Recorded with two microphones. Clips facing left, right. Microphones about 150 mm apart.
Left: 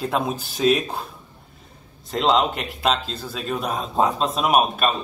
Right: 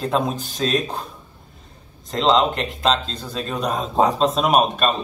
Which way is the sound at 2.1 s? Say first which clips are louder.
Right 2 dB; 5° left (ahead or behind).